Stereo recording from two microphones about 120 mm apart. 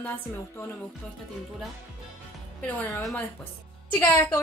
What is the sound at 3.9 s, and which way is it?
Speech, 15° left (ahead or behind).